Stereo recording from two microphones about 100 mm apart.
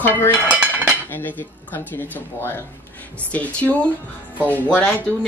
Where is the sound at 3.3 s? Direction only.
15° left (ahead or behind).